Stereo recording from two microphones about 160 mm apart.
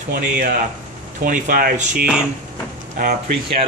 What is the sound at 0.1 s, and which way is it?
Speech, 55° right (ahead or behind).